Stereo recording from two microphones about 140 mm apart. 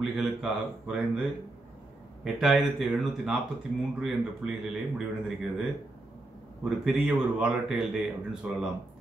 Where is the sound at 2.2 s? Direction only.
Centre (ahead or behind).